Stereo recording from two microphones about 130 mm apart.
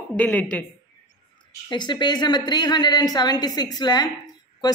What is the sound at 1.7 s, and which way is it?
A woman's voice, 35° left (ahead or behind).